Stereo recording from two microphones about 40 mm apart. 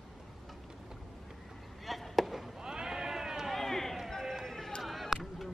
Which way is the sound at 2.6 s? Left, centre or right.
Centre.